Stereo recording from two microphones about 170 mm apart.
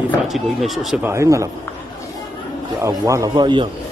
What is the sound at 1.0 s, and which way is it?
Speech, 15° right (ahead or behind).